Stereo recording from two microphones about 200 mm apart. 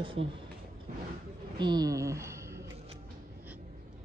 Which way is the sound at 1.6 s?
20° right (ahead or behind).